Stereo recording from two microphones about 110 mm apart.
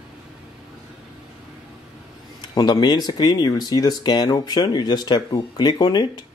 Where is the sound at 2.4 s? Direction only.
40° left (ahead or behind).